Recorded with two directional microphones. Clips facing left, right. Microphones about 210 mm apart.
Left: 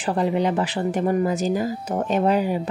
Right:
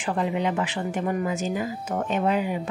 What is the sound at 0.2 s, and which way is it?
Speech, 35° left (ahead or behind).